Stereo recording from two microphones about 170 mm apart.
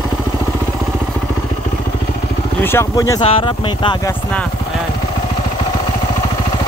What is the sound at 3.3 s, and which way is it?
Speech, 30° left (ahead or behind).